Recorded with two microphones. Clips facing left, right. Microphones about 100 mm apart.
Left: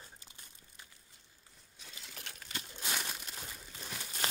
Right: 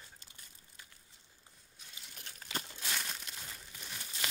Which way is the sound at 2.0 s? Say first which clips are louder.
Left 4 dB; 80° left.